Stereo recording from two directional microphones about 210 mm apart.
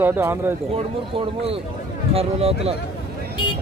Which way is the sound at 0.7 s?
25° right (ahead or behind).